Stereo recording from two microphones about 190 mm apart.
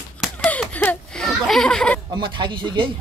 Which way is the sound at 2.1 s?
25° right (ahead or behind).